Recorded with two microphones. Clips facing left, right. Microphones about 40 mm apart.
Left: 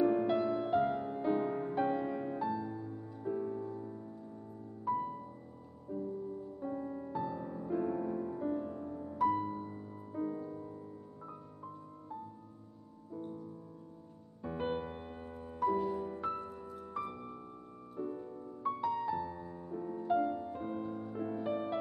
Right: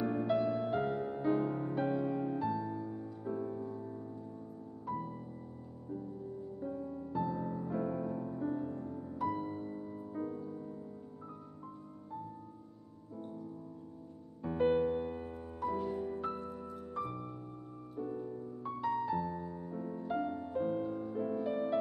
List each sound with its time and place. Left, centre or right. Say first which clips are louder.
0.0 s music: left 2 dB; centre
5.9 s music: left 3 dB; centre
6.6 s music: left 1 dB; left
7.1 s music: right 5 dB; centre
10.3 s music: left 1 dB; centre
14.6 s music: right 9 dB; centre
18.8 s music: right 3 dB; centre